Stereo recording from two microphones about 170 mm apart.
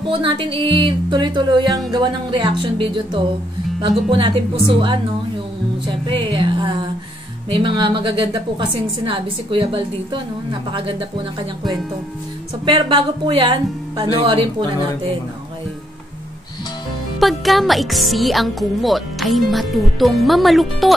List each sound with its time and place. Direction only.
0.1 s a woman's voice: 30° right (ahead or behind)
12.6 s a woman's voice: 25° right (ahead or behind)
17.2 s speech: centre (ahead or behind)